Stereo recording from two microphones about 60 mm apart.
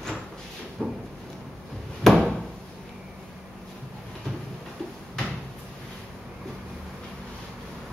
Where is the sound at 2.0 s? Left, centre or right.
Centre.